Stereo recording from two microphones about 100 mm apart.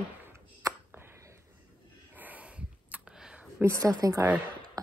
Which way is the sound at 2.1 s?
15° right (ahead or behind).